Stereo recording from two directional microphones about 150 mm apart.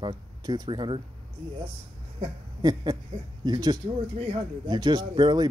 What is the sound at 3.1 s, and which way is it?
Speech, 40° right (ahead or behind).